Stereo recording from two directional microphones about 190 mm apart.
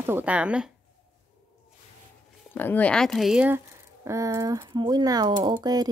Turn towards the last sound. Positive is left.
turn(degrees=-20)  # may be behind; listen again after turning